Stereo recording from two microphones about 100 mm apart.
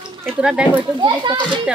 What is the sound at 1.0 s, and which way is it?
Speech, 50° right (ahead or behind).